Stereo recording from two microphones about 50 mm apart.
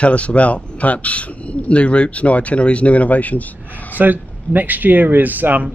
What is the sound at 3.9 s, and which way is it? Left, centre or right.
Speech, right.